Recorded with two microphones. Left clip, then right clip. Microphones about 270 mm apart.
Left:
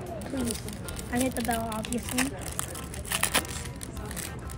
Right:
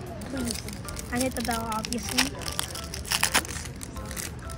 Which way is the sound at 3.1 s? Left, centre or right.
Centre.